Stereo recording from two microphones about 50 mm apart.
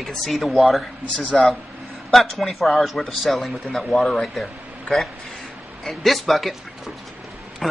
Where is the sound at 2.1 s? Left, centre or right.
Centre.